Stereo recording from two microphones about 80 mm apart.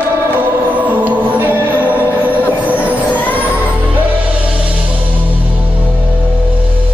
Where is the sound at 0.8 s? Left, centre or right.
Right.